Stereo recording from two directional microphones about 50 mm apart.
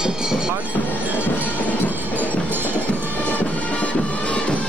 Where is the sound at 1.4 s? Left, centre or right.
Left.